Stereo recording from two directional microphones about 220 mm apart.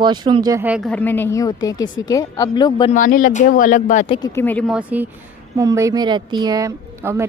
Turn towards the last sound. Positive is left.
turn(degrees=-10)  # may be behind; listen again after turning